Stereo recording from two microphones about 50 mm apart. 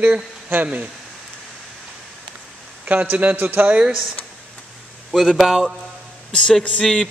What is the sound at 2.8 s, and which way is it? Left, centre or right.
Speech, right.